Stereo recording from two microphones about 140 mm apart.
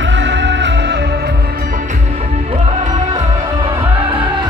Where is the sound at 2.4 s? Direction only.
45° right (ahead or behind).